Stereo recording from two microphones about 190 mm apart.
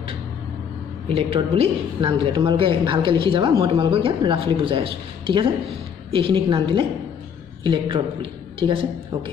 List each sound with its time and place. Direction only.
1.0 s a woman's voice: 30° right (ahead or behind)